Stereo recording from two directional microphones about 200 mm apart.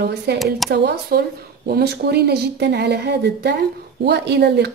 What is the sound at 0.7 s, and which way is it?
Speech, 55° right (ahead or behind).